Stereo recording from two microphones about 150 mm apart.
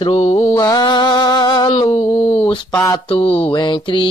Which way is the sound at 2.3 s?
35° left (ahead or behind).